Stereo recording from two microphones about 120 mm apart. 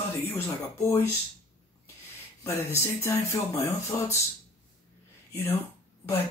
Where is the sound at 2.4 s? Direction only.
20° left (ahead or behind).